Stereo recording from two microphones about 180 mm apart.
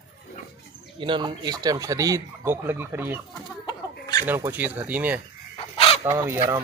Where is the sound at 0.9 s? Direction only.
25° right (ahead or behind); by 3.2 s 10° right (ahead or behind).